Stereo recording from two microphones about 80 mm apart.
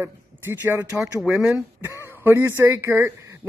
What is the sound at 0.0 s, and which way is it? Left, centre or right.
Speech, right.